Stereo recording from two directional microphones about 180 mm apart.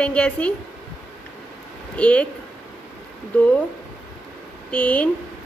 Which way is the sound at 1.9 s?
5° left (ahead or behind).